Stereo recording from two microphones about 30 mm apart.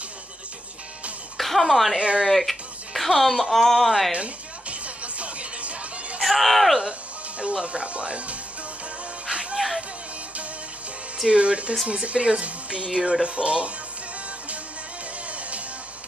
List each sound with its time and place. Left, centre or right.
1.4 s speech: centre
2.0 s speech: right
2.2 s music: centre
3.2 s speech: centre
4.1 s music: right
6.2 s speech: centre
6.9 s speech: right
9.3 s music: right
11.2 s speech: right